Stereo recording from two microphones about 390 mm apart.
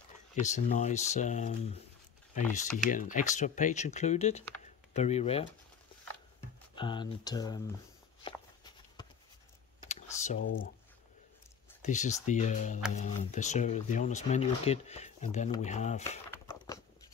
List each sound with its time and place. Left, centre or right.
0.4 s speech: centre
2.9 s speech: centre
6.7 s speech: centre
8.2 s walk: centre
9.8 s computer keyboard: centre
11.8 s speech: centre
16.0 s a sound: centre